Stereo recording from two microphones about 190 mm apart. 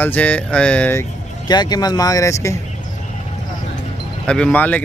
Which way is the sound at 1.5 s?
20° left (ahead or behind).